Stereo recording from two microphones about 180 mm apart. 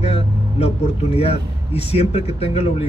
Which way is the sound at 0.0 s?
35° left (ahead or behind).